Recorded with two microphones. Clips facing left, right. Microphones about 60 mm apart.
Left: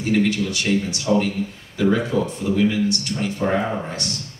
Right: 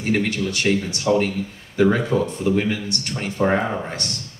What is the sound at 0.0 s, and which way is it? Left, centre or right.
Speech, right.